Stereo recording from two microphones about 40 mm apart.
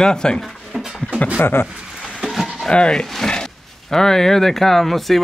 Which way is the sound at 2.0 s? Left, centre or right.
Right.